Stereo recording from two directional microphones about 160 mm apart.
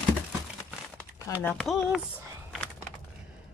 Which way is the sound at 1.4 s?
Centre (ahead or behind).